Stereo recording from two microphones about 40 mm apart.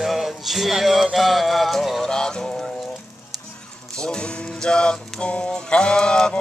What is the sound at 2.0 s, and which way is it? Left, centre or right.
Music, centre.